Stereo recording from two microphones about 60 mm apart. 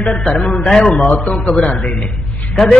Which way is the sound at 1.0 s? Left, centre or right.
Left.